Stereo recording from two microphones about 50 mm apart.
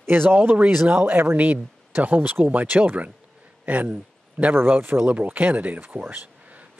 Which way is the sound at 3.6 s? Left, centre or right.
Right.